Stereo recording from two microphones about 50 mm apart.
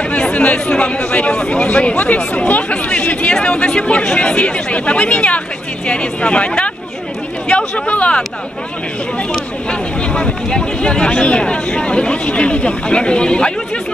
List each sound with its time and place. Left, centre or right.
0.1 s speech: left
9.7 s speech: centre